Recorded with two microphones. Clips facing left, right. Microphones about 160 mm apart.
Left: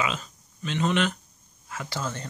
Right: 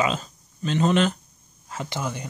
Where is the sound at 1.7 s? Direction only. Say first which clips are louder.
Right 3 dB; 25° right (ahead or behind).